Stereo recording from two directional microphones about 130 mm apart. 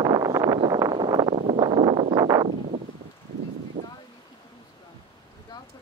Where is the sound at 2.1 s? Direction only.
35° right (ahead or behind).